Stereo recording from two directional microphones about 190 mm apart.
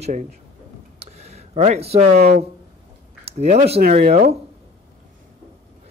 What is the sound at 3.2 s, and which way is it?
A man's voice, 35° right (ahead or behind).